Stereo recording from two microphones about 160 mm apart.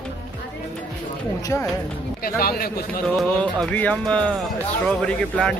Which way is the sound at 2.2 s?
70° left (ahead or behind).